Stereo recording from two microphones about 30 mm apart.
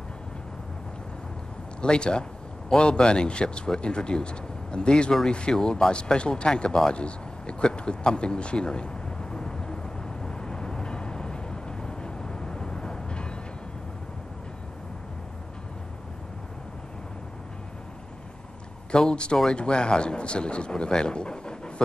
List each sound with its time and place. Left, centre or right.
1.8 s speech: left
5.5 s a sound: left
18.9 s speech: left